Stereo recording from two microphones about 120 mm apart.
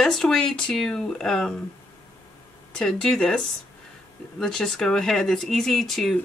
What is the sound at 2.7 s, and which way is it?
Speech, 5° left (ahead or behind).